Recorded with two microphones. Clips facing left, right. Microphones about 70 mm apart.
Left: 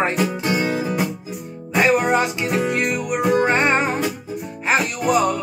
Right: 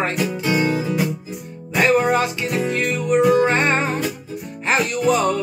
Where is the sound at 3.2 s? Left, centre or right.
Left.